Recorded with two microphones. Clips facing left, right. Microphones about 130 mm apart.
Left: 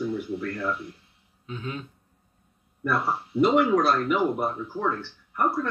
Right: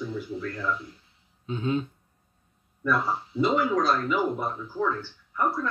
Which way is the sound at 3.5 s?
70° left (ahead or behind).